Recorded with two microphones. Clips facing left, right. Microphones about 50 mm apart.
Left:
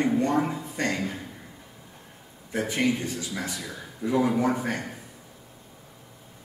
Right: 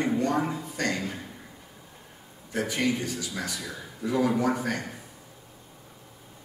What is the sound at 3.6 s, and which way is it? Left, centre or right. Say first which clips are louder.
Speech: left 1 dB; centre.